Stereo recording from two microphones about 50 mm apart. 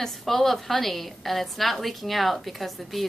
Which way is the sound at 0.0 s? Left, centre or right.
Centre.